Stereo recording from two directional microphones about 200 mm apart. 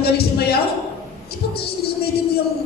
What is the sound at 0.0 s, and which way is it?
A man's voice, 50° left (ahead or behind).